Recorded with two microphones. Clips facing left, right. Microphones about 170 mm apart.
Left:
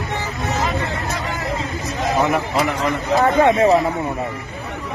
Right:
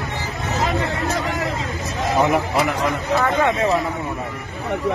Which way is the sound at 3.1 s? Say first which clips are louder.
Left 6 dB; 35° left (ahead or behind).